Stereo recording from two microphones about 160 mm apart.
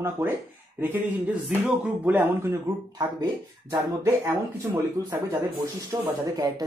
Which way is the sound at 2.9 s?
25° right (ahead or behind).